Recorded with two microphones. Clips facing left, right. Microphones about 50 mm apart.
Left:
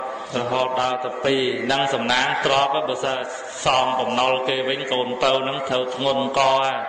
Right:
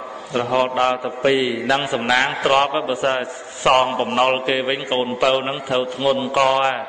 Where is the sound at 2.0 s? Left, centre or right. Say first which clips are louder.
Right 2 dB; right.